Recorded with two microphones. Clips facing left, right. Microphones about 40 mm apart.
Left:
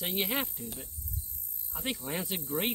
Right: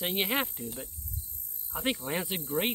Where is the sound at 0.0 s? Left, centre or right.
Centre.